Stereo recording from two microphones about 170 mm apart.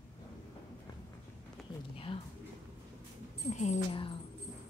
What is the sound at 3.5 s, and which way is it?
Speech, 35° left (ahead or behind).